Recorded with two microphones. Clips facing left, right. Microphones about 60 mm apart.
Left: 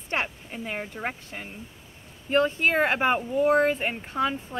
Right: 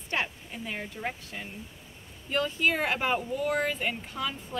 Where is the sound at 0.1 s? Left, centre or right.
Left.